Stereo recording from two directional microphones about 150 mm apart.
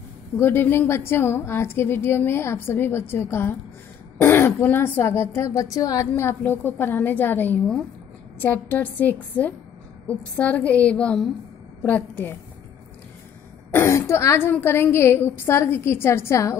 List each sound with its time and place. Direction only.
0.4 s a woman's voice: 15° left (ahead or behind)
13.7 s a woman's voice: 15° left (ahead or behind)